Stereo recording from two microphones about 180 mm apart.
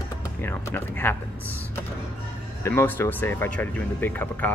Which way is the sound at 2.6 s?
15° left (ahead or behind).